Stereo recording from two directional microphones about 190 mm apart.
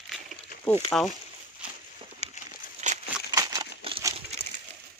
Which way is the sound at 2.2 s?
35° left (ahead or behind).